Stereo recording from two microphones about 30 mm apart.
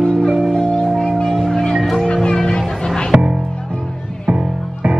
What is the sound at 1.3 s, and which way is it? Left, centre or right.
Music, centre.